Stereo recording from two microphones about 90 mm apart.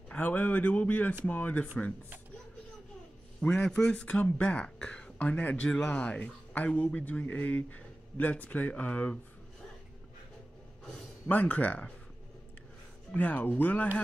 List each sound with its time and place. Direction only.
0.1 s speech: 20° left (ahead or behind)
3.3 s speech: 10° left (ahead or behind)
11.2 s speech: 20° left (ahead or behind)
13.1 s speech: 20° left (ahead or behind)